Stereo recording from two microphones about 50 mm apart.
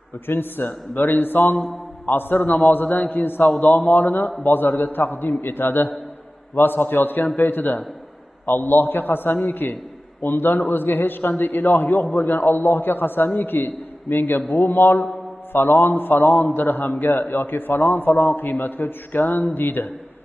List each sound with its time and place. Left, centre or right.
0.3 s a man's voice: left
2.4 s a man's voice: left
2.7 s a man's voice: left